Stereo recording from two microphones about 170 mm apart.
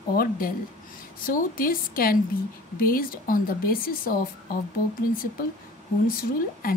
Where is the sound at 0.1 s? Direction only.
60° left (ahead or behind).